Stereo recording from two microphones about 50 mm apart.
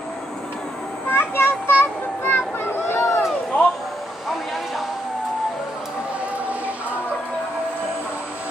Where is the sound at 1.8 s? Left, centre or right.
Left.